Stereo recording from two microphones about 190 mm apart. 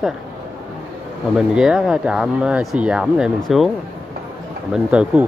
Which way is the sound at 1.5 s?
5° right (ahead or behind).